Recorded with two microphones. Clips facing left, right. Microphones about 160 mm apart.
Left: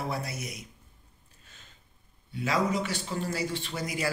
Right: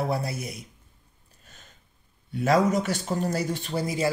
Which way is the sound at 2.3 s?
45° right (ahead or behind).